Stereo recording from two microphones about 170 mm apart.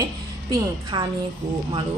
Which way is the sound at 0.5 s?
25° right (ahead or behind).